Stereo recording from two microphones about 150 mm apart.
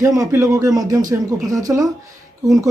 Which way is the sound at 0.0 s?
20° right (ahead or behind).